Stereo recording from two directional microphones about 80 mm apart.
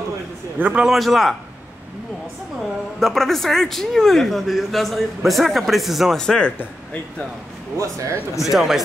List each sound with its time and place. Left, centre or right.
0.6 s a man's voice: right
0.8 s speech: centre
3.0 s speech: centre
7.7 s speech: right
8.4 s speech: centre